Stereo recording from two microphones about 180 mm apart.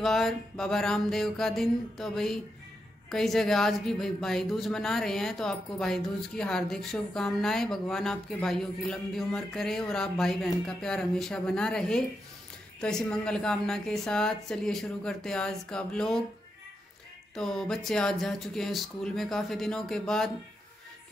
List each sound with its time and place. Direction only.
0.0 s speech: centre (ahead or behind)
17.4 s speech: 5° left (ahead or behind)